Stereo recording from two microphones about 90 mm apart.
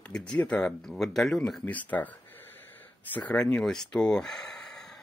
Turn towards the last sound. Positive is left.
turn(degrees=5)  # may be behind; listen again after turning